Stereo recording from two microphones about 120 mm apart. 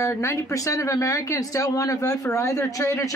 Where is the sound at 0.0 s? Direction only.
25° left (ahead or behind).